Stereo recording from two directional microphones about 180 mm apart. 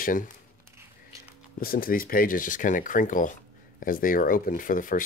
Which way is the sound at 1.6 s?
55° left (ahead or behind).